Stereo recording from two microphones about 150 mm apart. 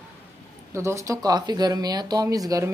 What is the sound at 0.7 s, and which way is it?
Speech, 20° right (ahead or behind).